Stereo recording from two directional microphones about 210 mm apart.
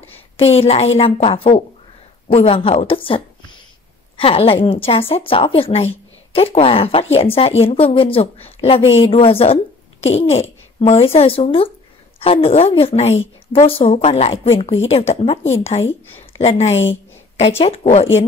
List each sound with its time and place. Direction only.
0.4 s a woman's voice: 30° left (ahead or behind)